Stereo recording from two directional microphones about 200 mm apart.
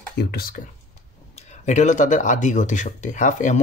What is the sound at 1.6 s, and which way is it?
Speech, 35° left (ahead or behind).